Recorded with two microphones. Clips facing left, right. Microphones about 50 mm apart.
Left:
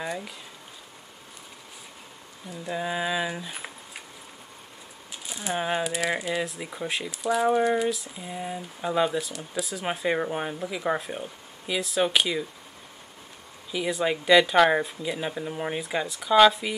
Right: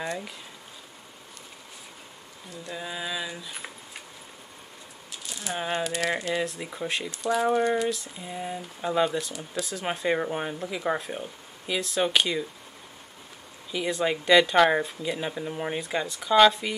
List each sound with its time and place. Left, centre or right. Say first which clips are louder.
0.0 s speech: even; centre
2.5 s speech: left 6 dB; centre
3.5 s a sound: left 1 dB; centre
5.2 s speech: left 3 dB; centre
13.7 s speech: even; centre